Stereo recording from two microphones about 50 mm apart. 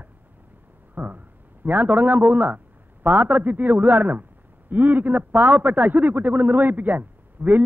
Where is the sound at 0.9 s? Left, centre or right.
Right.